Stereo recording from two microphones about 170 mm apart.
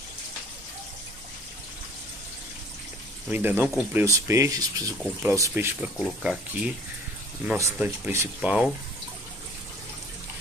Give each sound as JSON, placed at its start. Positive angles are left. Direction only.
{"t": 3.3, "sound": "speech", "side_deg": -10}
{"t": 8.4, "sound": "speech", "side_deg": -5}